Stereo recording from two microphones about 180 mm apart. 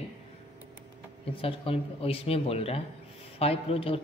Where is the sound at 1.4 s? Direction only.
30° left (ahead or behind).